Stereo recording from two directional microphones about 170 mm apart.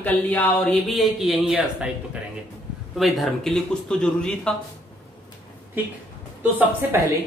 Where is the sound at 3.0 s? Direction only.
Centre (ahead or behind).